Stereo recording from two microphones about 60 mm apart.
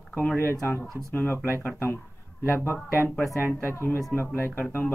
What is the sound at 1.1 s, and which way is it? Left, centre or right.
Speech, left.